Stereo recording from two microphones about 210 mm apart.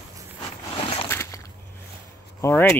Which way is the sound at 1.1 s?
10° left (ahead or behind).